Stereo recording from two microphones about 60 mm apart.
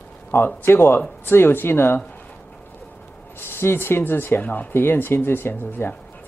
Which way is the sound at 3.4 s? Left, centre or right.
Left.